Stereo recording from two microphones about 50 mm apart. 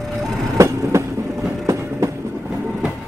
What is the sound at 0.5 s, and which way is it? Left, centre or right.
Train, right.